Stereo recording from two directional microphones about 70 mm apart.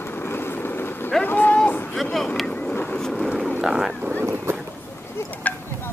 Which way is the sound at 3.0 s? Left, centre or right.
Centre.